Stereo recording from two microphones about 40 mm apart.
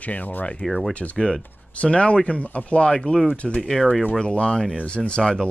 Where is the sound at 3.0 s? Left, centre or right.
Centre.